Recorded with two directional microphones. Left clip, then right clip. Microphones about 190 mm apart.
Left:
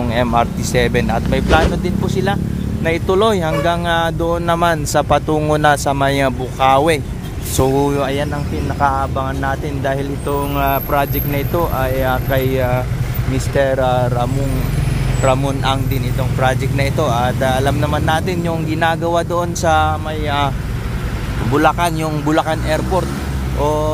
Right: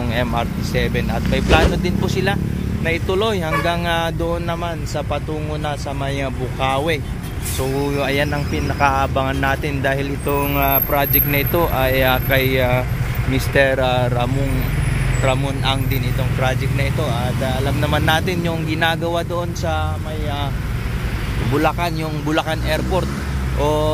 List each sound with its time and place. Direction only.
0.1 s speech: 10° left (ahead or behind)
2.8 s speech: 15° left (ahead or behind)
4.6 s speech: 25° left (ahead or behind)
8.0 s speech: centre (ahead or behind)
12.3 s speech: centre (ahead or behind)
15.2 s speech: 10° left (ahead or behind)
17.7 s speech: centre (ahead or behind); by 20.5 s 25° left (ahead or behind)
21.5 s speech: 5° left (ahead or behind)